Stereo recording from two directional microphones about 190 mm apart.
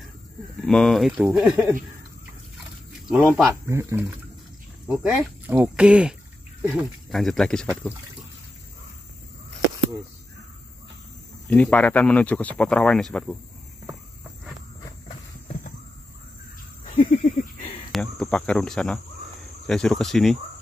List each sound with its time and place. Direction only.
0.6 s speech: 5° left (ahead or behind)
3.3 s speech: 5° left (ahead or behind)
3.6 s speech: 15° right (ahead or behind)
4.8 s speech: 5° right (ahead or behind)
11.5 s speech: 5° left (ahead or behind)
17.2 s a sound: 40° left (ahead or behind)
17.9 s speech: 5° left (ahead or behind)